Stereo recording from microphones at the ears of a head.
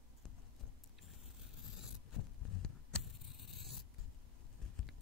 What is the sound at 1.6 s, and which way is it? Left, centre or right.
Mechanisms, left.